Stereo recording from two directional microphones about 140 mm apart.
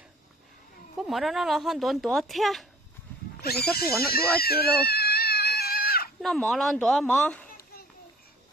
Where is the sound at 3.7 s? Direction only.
90° left.